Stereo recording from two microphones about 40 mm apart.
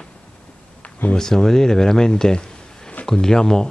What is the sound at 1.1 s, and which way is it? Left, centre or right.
Speech, centre.